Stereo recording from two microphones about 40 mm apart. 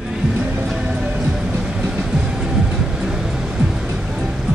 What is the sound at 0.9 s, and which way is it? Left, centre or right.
Music, right.